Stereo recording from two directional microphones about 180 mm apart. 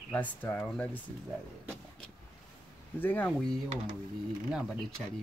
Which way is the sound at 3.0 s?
10° left (ahead or behind).